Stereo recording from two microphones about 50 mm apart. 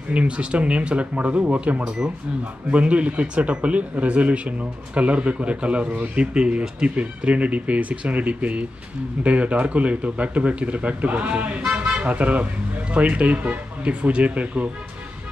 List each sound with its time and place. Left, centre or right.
0.1 s speech: right